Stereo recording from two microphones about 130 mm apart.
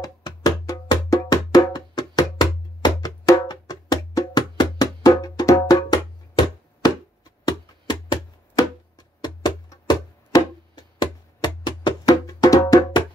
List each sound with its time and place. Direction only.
0.0 s music: 30° left (ahead or behind)